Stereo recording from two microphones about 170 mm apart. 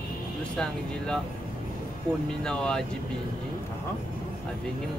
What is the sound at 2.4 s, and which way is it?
Speech, 5° left (ahead or behind).